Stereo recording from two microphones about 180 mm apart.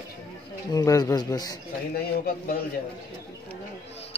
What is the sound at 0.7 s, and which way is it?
Speech, 20° left (ahead or behind).